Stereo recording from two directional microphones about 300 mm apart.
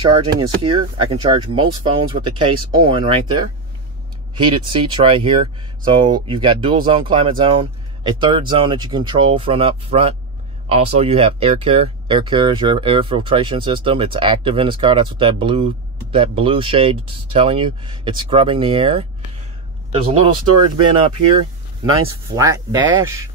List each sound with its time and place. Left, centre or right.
0.0 s speech: centre
21.4 s speech: centre